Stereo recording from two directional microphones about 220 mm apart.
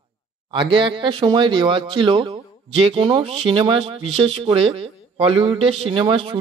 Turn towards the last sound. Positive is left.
turn(degrees=-25)  # may be behind; listen again after turning